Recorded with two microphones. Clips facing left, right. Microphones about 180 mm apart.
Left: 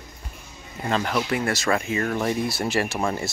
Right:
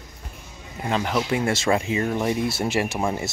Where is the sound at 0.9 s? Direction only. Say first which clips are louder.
Right 1 dB; 20° right (ahead or behind).